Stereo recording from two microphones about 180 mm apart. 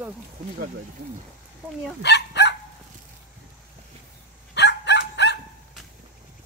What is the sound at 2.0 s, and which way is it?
Dog, 70° left (ahead or behind).